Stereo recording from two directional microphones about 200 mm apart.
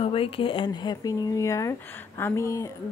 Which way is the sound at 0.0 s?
25° left (ahead or behind).